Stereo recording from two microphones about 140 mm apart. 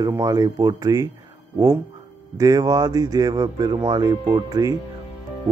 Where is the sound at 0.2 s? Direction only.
25° right (ahead or behind).